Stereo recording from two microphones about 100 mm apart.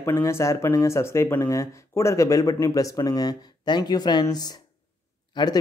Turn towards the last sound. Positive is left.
turn(degrees=45)  # may be behind; listen again after turning